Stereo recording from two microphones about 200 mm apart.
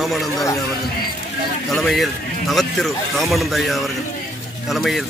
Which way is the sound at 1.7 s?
Centre (ahead or behind).